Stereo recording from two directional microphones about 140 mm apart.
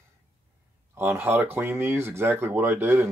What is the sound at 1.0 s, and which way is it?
Speech, 15° right (ahead or behind).